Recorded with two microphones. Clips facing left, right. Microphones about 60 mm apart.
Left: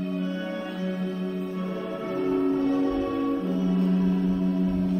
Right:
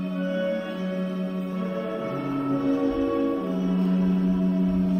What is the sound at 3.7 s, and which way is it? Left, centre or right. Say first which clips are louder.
Gong: right 1 dB; centre.